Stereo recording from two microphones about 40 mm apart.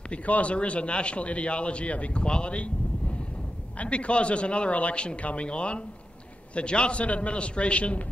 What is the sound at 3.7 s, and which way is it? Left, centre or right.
Speech, left.